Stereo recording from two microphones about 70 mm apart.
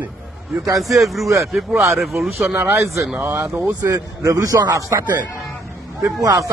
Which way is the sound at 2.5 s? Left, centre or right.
Right.